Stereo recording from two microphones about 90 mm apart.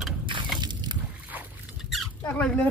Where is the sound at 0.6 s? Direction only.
55° right (ahead or behind).